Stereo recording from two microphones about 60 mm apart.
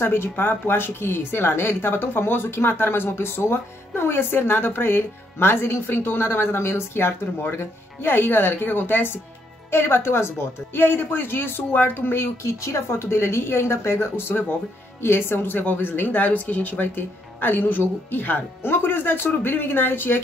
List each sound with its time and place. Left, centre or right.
0.0 s speech: left
12.4 s a woman's voice: left